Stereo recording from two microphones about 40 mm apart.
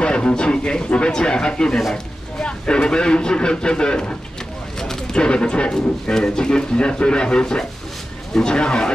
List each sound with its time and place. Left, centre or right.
0.0 s speech: left
4.7 s a sound: centre
5.1 s speech: left